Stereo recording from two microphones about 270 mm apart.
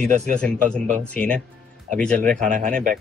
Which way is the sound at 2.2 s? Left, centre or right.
Right.